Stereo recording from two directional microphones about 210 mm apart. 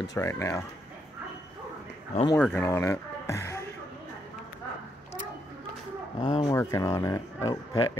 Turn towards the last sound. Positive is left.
turn(degrees=15)  # may be behind; listen again after turning